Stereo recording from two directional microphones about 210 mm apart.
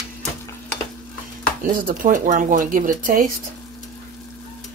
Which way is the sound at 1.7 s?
40° right (ahead or behind).